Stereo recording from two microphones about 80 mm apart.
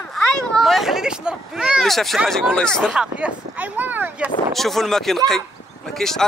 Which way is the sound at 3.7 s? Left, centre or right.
Right.